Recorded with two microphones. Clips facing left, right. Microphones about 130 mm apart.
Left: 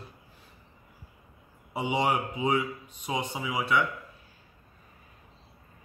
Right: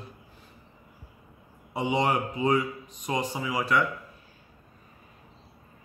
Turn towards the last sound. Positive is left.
turn(degrees=0)  # may be behind; listen again after turning